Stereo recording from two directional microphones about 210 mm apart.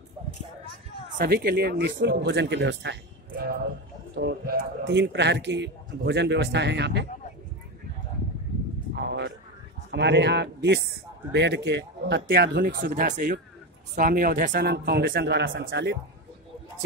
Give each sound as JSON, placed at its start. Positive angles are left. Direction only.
{"t": 1.1, "sound": "a man's voice", "side_deg": -45}
{"t": 8.9, "sound": "a sound", "side_deg": -55}
{"t": 9.8, "sound": "a man's voice", "side_deg": -55}